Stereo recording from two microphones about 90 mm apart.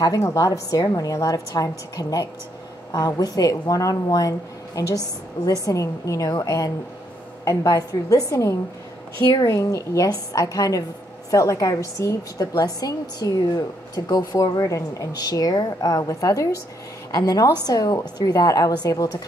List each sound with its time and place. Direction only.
0.0 s a woman's voice: 35° left (ahead or behind)